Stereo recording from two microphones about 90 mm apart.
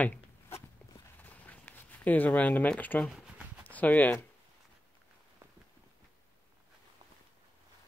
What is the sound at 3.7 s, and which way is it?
Speech, 20° left (ahead or behind).